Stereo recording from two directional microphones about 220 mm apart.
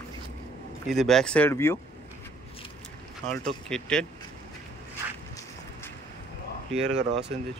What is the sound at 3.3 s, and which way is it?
Speech, 5° left (ahead or behind).